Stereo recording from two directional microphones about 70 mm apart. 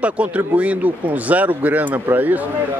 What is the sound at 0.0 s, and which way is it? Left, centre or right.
Speech, centre.